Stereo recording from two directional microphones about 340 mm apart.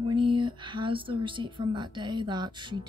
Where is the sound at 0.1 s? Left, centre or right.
Centre.